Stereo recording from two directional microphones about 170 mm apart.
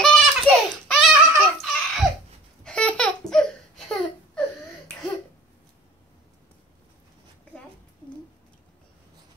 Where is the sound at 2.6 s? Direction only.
5° left (ahead or behind).